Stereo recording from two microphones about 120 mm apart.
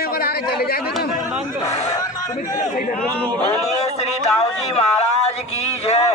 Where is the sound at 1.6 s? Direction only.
70° left (ahead or behind).